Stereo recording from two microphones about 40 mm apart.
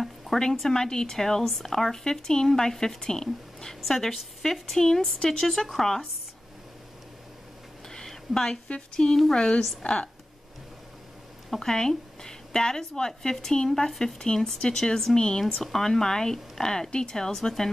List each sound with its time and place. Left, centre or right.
0.0 s speech: centre
5.0 s speech: left
5.4 s speech: centre
7.9 s a sound: centre
8.9 s a woman's voice: centre
11.5 s speech: centre
15.4 s speech: centre